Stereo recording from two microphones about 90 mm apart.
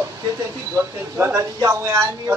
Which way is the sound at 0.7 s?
30° right (ahead or behind).